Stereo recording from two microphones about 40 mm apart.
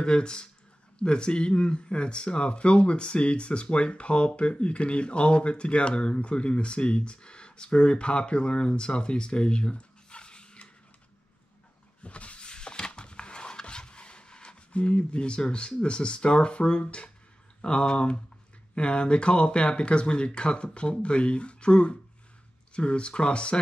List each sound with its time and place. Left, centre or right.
0.0 s speech: left
12.0 s a sound: left
17.6 s speech: left